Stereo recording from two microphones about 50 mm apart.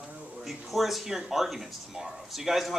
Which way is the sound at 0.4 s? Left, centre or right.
Centre.